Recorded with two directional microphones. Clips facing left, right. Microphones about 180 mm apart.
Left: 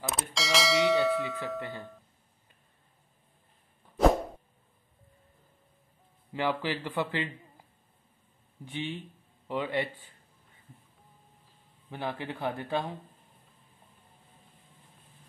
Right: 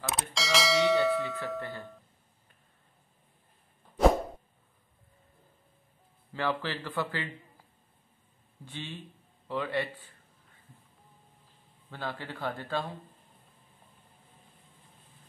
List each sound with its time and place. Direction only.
0.0 s bell: centre (ahead or behind)
1.6 s music: 20° left (ahead or behind)
6.3 s speech: 15° left (ahead or behind)
8.6 s speech: 20° left (ahead or behind)
11.9 s speech: 20° left (ahead or behind)